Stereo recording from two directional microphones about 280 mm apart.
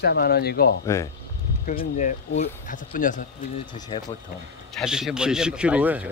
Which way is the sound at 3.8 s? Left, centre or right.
Centre.